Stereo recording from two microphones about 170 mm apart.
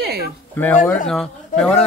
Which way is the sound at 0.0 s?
65° right (ahead or behind).